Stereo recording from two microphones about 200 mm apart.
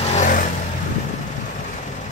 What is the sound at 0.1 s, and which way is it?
Vehicle, 40° left (ahead or behind).